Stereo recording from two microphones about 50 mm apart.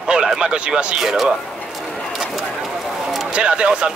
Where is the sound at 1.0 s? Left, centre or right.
Centre.